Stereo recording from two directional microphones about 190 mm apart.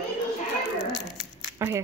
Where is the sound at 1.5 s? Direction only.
15° right (ahead or behind).